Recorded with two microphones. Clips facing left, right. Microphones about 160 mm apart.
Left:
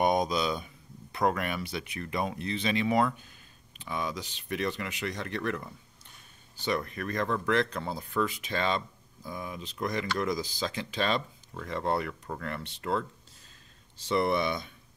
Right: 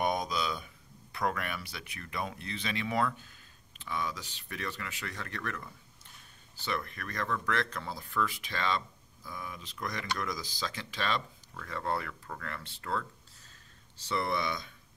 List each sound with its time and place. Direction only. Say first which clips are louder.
0.0 s a sound: left 5 dB; 20° left (ahead or behind)
1.1 s speech: left 5 dB; 25° left (ahead or behind)
14.0 s speech: left 6 dB; 20° left (ahead or behind)